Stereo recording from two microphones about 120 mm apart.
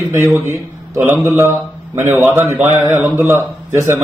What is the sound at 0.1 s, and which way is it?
Speech, 20° right (ahead or behind).